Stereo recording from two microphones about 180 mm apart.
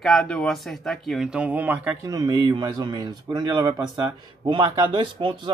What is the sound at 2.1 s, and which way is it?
Speech, 25° right (ahead or behind).